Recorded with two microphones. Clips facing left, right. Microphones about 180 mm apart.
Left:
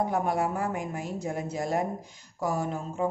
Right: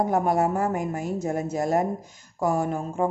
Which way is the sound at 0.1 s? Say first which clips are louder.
Right 5 dB; 45° right (ahead or behind).